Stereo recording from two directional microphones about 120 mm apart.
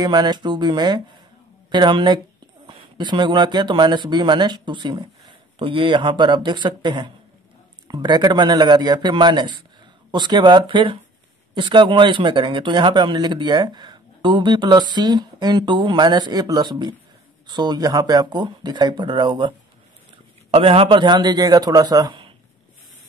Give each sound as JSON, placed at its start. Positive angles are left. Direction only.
{"t": 0.0, "sound": "a man's voice", "side_deg": -35}
{"t": 20.5, "sound": "a man's voice", "side_deg": -55}